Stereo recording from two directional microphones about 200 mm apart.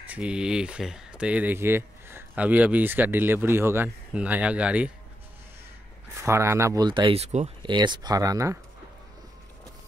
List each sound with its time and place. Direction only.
0.1 s speech: 5° right (ahead or behind)
6.1 s speech: 15° right (ahead or behind); by 7.7 s 30° right (ahead or behind)
7.7 s speech: 20° right (ahead or behind)